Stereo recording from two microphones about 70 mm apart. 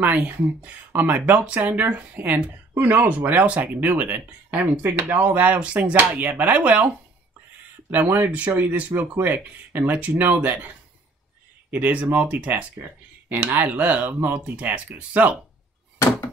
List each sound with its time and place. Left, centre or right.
0.0 s speech: right
7.9 s speech: right
11.7 s speech: right